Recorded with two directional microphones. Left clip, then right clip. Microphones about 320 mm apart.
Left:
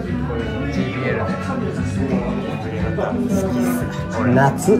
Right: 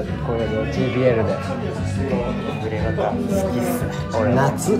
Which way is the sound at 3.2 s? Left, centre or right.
Centre.